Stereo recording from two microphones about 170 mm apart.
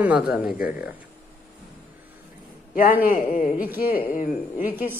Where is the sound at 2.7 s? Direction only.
55° left (ahead or behind).